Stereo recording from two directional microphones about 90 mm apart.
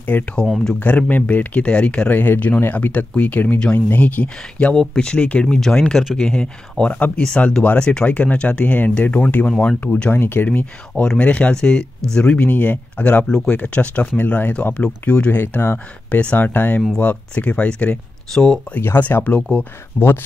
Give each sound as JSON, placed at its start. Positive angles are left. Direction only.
{"t": 0.1, "sound": "speech", "side_deg": 20}
{"t": 10.1, "sound": "speech", "side_deg": 25}
{"t": 18.8, "sound": "speech", "side_deg": 20}